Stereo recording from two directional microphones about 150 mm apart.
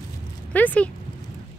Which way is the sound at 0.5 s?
10° left (ahead or behind).